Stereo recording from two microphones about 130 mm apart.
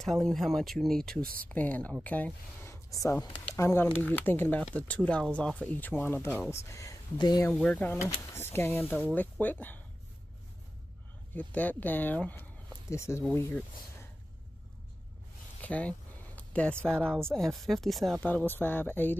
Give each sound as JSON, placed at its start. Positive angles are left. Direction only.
{"t": 0.0, "sound": "speech", "side_deg": 5}
{"t": 7.5, "sound": "speech", "side_deg": 10}
{"t": 11.3, "sound": "speech", "side_deg": 10}
{"t": 15.6, "sound": "a sound", "side_deg": 10}
{"t": 17.3, "sound": "speech", "side_deg": 5}
{"t": 18.2, "sound": "speech", "side_deg": 15}